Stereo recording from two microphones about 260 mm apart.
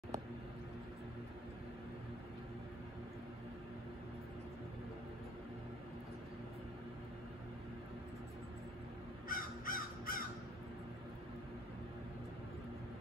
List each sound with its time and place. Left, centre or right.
9.3 s crow: left